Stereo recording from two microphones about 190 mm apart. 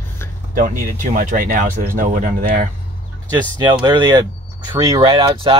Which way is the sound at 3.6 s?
25° right (ahead or behind).